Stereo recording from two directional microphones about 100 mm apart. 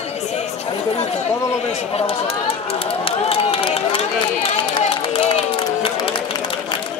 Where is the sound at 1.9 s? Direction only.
85° left.